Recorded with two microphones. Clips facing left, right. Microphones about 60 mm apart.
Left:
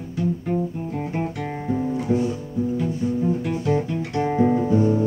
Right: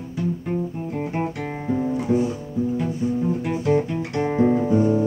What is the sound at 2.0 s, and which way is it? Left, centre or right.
Music, right.